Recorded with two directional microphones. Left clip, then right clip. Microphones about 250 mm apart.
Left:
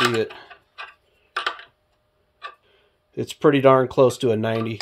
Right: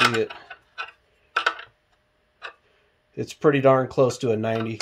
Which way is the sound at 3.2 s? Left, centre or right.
Left.